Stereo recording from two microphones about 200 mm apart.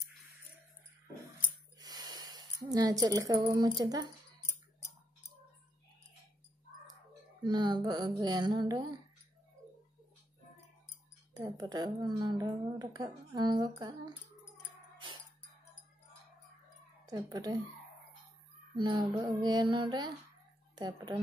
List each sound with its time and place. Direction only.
1.8 s speech: 20° right (ahead or behind)
7.4 s a woman's voice: 20° right (ahead or behind)
11.3 s a woman's voice: 20° right (ahead or behind)
17.0 s speech: 20° right (ahead or behind)
18.8 s a woman's voice: 20° right (ahead or behind)